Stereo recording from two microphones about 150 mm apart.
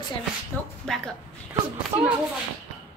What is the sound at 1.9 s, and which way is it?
Speech, 15° right (ahead or behind).